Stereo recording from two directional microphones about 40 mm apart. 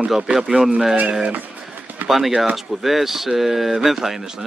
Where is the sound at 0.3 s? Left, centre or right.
Centre.